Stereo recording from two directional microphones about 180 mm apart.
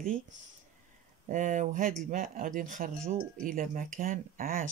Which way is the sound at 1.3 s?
45° right (ahead or behind).